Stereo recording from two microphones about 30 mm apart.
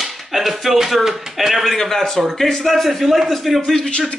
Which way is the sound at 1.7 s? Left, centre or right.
Centre.